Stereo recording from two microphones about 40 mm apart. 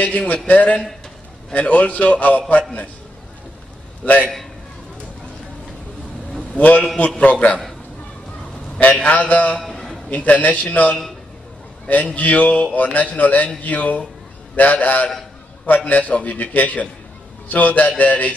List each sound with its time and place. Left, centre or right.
0.0 s a man's voice: left
4.0 s a man's voice: left
6.5 s a man's voice: left
8.7 s a man's voice: left
9.6 s a sound: centre
10.0 s a man's voice: left
12.2 s a man's voice: left